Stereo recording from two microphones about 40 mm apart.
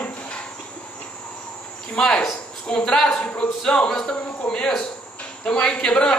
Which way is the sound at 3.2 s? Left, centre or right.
Left.